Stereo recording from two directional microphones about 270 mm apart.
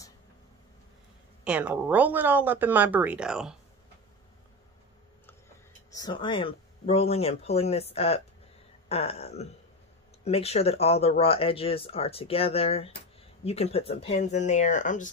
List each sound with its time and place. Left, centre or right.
1.4 s speech: centre
5.9 s speech: centre